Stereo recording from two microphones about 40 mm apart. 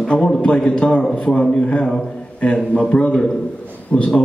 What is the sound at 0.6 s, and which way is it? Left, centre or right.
A man's voice, centre.